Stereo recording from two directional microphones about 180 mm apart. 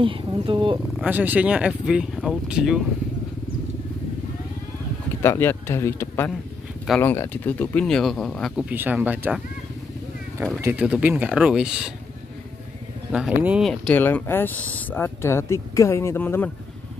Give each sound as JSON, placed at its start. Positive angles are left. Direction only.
{"t": 0.0, "sound": "speech", "side_deg": -30}
{"t": 0.9, "sound": "speech", "side_deg": -10}
{"t": 5.2, "sound": "speech", "side_deg": 15}
{"t": 10.6, "sound": "speech", "side_deg": -10}
{"t": 13.1, "sound": "speech", "side_deg": -5}